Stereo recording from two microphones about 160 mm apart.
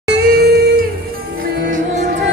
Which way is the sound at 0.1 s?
80° right.